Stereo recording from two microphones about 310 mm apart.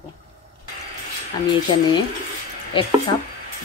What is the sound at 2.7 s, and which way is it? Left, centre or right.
Speech, centre.